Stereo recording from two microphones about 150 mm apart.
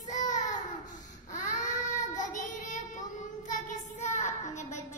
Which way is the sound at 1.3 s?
60° left (ahead or behind).